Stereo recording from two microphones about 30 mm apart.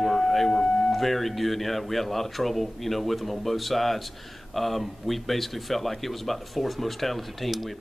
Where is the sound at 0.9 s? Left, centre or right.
Centre.